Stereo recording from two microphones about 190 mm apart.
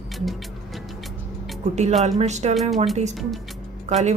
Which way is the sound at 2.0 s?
35° right (ahead or behind).